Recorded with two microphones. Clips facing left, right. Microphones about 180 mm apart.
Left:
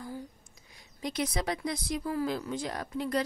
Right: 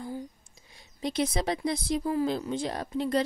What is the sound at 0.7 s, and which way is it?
Speech, 25° right (ahead or behind).